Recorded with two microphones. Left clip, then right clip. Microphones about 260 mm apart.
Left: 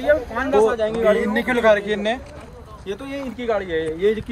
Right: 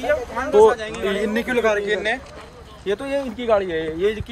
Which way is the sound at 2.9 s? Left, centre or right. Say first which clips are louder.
Right 6 dB; right.